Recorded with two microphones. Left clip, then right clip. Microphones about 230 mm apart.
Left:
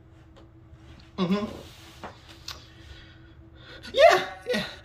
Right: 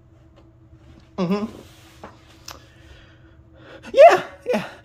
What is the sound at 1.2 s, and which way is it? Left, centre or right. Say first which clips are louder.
Speech: right 4 dB; right.